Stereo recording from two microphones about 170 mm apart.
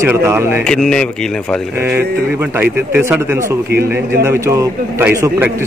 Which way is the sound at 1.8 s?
10° right (ahead or behind).